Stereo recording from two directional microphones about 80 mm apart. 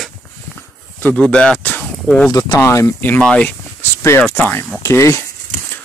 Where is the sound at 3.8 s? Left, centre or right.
Left.